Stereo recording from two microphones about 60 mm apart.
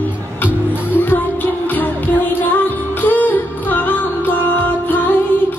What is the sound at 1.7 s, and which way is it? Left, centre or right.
Music, left.